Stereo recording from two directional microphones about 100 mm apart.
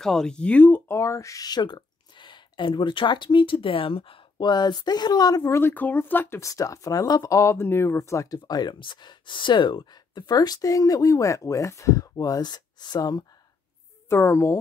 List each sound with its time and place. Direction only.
0.0 s speech: 5° left (ahead or behind)
0.9 s speech: 30° left (ahead or behind)
5.6 s speech: 20° left (ahead or behind)
6.4 s speech: 35° left (ahead or behind)
14.0 s speech: 30° left (ahead or behind)